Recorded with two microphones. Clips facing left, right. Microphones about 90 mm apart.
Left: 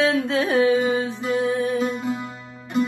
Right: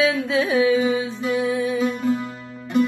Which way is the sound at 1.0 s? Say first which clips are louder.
Even; 45° left (ahead or behind).